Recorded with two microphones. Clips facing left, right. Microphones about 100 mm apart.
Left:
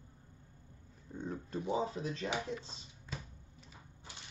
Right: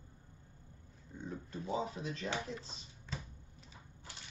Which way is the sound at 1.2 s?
40° left (ahead or behind).